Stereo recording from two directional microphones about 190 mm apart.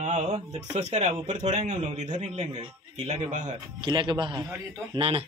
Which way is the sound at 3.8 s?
25° right (ahead or behind).